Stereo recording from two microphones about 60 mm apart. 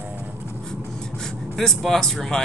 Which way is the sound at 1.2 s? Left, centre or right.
Centre.